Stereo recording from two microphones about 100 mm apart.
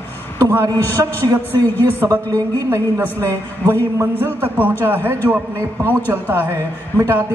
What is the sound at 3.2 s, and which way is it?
A man's voice, 25° right (ahead or behind).